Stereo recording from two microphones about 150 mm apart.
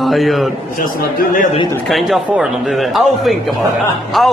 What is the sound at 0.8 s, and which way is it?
Speech, 65° left (ahead or behind).